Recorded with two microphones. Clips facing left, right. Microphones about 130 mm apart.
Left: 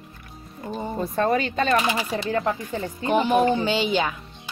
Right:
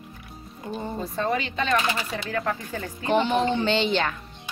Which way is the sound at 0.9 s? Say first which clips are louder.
Left 5 dB; 55° left (ahead or behind).